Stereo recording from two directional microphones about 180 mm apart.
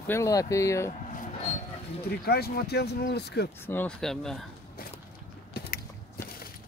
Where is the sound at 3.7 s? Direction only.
10° left (ahead or behind).